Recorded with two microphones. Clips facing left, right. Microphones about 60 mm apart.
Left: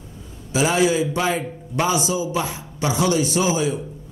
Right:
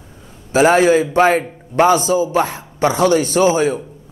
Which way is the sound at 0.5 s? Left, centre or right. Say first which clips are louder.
Right 7 dB; right.